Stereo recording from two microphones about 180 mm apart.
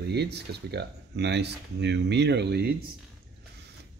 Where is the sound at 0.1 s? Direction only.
65° right (ahead or behind).